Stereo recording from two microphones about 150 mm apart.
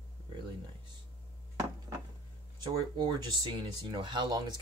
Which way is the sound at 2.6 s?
30° right (ahead or behind).